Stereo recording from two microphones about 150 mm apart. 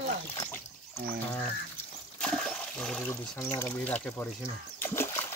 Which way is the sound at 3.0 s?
15° left (ahead or behind).